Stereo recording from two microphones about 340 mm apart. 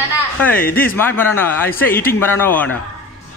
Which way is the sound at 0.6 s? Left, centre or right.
Left.